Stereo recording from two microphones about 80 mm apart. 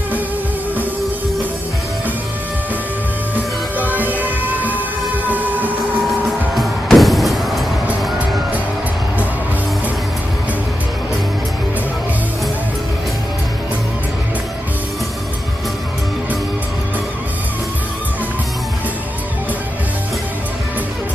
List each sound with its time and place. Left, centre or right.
3.7 s music: right
6.0 s music: centre